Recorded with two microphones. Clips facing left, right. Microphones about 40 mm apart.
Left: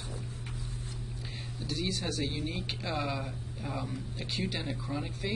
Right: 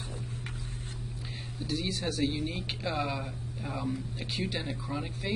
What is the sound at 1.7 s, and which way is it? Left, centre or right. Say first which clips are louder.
Speech: right 1 dB; centre.